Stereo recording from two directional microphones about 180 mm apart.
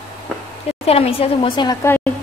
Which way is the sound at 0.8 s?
35° left (ahead or behind).